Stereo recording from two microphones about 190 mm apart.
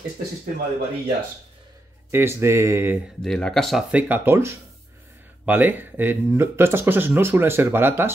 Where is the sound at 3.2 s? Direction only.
Centre (ahead or behind).